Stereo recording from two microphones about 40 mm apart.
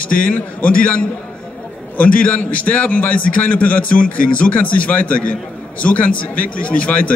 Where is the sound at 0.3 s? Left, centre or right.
Left.